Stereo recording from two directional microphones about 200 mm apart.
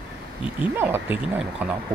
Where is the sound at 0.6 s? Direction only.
10° right (ahead or behind).